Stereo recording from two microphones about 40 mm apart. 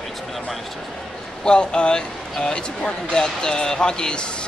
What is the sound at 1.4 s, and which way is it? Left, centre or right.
Speech, left.